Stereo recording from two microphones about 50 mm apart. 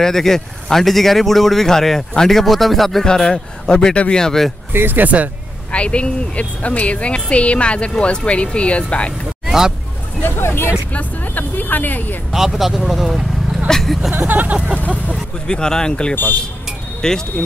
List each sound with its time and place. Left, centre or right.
0.0 s a man's voice: centre
3.1 s a man's voice: centre
4.7 s speech: right
5.0 s a sound: right
5.7 s a woman's voice: left
10.2 s speech: left
10.9 s speech: left
12.3 s a man's voice: centre
13.7 s a man's voice: centre
14.1 s a sound: right
15.4 s a man's voice: centre